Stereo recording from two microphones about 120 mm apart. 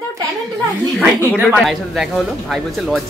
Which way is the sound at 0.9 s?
5° right (ahead or behind).